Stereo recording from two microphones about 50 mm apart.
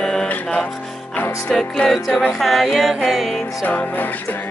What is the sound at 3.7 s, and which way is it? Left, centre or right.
Music, left.